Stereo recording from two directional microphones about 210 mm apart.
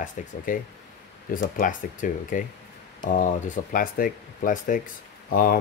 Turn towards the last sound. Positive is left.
turn(degrees=40)  # may be behind; listen again after turning